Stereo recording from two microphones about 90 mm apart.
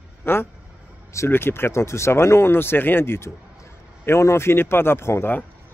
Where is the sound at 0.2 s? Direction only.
25° left (ahead or behind).